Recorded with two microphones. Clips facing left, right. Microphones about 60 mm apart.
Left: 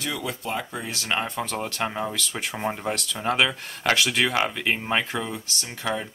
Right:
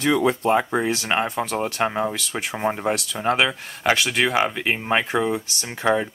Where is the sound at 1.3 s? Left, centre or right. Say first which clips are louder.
Right 5 dB; centre.